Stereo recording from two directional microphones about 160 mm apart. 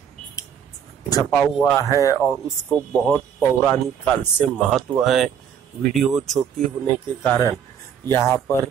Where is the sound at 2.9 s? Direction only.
5° left (ahead or behind).